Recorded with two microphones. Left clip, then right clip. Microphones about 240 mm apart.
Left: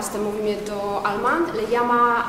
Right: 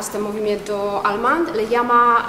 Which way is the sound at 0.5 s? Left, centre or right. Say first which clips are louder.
Right 4 dB; right.